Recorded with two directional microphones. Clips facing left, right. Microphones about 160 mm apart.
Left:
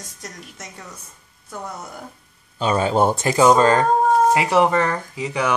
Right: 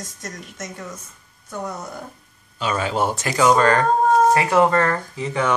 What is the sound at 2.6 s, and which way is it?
Speech, 30° left (ahead or behind).